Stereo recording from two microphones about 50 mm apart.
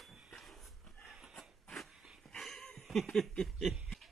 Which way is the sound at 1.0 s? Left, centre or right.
Centre.